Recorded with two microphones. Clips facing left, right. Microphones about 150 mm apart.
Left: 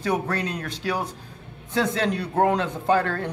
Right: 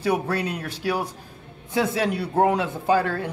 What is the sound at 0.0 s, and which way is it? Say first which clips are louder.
Speech: right 2 dB; 10° right (ahead or behind).